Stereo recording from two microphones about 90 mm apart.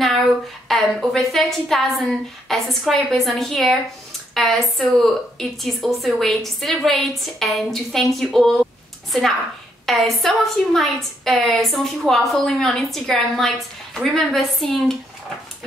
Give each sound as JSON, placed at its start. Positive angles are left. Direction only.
{"t": 0.7, "sound": "a woman's voice", "side_deg": 5}
{"t": 9.8, "sound": "a woman's voice", "side_deg": 0}